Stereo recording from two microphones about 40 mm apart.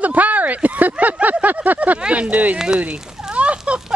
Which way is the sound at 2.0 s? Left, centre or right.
Right.